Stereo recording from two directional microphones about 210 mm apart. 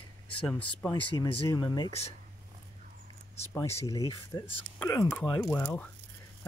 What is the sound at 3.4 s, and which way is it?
Speech, 15° left (ahead or behind).